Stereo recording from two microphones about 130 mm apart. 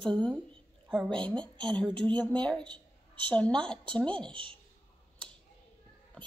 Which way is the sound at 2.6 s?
35° right (ahead or behind).